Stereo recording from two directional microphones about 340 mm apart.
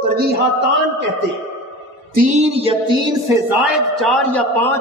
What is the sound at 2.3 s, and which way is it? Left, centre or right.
Music, centre.